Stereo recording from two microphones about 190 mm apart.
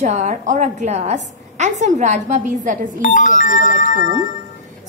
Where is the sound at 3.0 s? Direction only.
40° left (ahead or behind).